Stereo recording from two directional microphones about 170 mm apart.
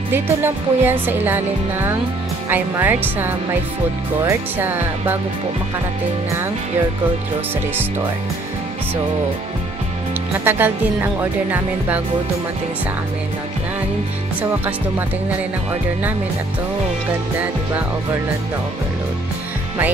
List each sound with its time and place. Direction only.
0.1 s speech: 10° right (ahead or behind)
10.4 s speech: 10° right (ahead or behind)